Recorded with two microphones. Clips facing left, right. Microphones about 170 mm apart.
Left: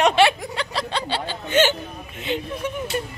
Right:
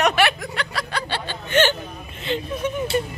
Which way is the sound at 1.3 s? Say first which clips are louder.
Even; 15° left (ahead or behind).